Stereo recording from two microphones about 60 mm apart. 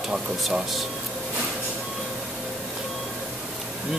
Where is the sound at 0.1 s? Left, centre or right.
Centre.